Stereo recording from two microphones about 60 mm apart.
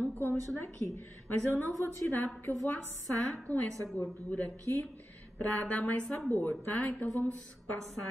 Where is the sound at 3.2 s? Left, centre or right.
Centre.